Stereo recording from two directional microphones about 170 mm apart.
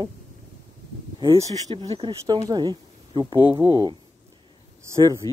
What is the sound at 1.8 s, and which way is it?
Speech, 30° right (ahead or behind).